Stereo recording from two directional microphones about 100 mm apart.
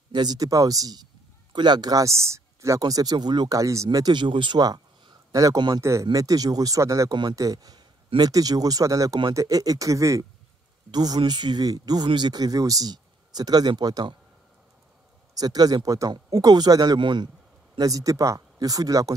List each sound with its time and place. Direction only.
0.1 s speech: 45° right (ahead or behind)
2.8 s speech: 40° right (ahead or behind)
15.3 s speech: 40° right (ahead or behind)
17.7 s speech: 35° right (ahead or behind)